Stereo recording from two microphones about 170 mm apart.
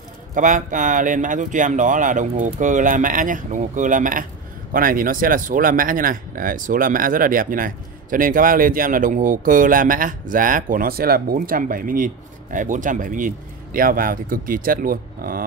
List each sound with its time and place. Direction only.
0.3 s speech: 50° right (ahead or behind)